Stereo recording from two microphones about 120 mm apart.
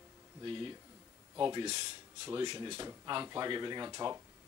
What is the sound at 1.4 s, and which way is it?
Speech, 35° right (ahead or behind).